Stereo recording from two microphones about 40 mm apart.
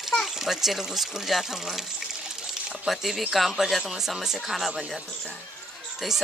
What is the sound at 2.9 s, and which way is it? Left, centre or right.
Speech, centre.